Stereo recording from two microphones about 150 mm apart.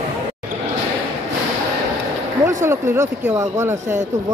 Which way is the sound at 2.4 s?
15° right (ahead or behind).